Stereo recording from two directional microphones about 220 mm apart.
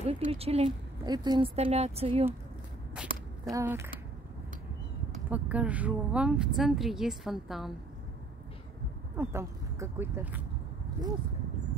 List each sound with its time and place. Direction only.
0.0 s a woman's voice: 25° right (ahead or behind)
2.9 s a sound: 5° right (ahead or behind)
5.3 s speech: 5° right (ahead or behind)
9.1 s speech: 10° right (ahead or behind)